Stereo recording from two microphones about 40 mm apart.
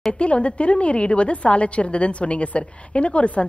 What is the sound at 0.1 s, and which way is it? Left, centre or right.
A woman's voice, left.